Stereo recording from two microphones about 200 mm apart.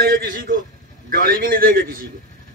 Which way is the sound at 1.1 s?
45° right (ahead or behind).